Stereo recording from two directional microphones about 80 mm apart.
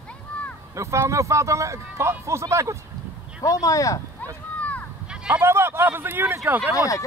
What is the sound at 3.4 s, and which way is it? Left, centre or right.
Speech, left.